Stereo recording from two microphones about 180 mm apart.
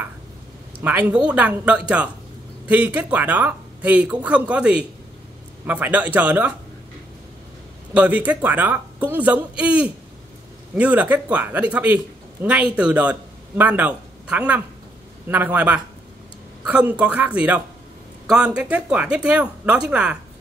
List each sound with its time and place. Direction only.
0.8 s speech: 10° right (ahead or behind)
7.9 s speech: 10° right (ahead or behind)